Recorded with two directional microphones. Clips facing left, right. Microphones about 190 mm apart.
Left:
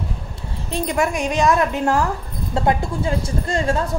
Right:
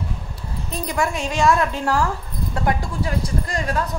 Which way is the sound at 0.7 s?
25° left (ahead or behind).